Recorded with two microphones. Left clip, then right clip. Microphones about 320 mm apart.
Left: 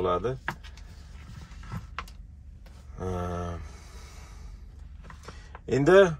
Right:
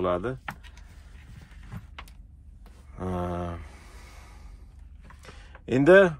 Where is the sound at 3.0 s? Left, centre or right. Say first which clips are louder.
Right 2 dB; right.